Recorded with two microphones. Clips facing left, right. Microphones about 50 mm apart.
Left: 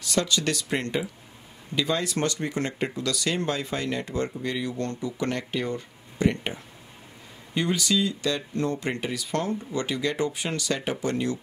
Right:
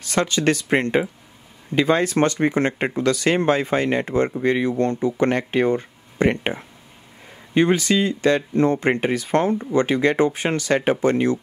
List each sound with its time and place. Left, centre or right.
0.0 s speech: right